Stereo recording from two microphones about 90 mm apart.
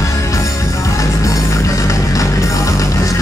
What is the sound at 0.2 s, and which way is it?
Music, 35° left (ahead or behind).